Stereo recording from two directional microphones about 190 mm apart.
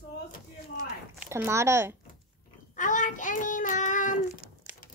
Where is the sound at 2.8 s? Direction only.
40° left (ahead or behind).